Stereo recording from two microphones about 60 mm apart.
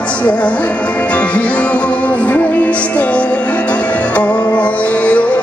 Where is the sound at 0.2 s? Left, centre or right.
Left.